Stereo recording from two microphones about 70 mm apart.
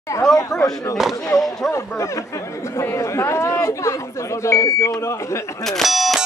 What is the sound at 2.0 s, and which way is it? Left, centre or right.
Speech, left.